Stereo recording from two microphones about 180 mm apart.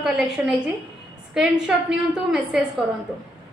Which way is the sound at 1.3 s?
5° right (ahead or behind).